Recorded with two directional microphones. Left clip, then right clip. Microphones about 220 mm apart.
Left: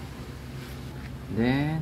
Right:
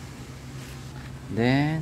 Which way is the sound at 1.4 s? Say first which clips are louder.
Right 3 dB; 45° right (ahead or behind).